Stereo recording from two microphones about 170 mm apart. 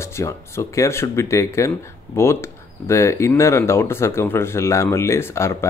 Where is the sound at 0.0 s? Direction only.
15° left (ahead or behind).